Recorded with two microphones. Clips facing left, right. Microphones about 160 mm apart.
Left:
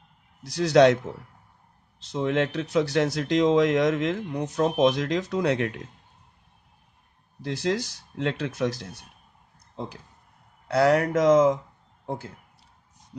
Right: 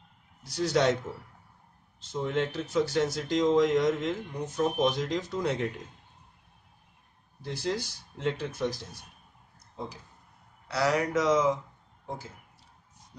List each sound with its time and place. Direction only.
0.6 s a man's voice: 75° left (ahead or behind)
2.0 s speech: 80° left
7.4 s speech: 90° left
10.7 s speech: 55° left (ahead or behind)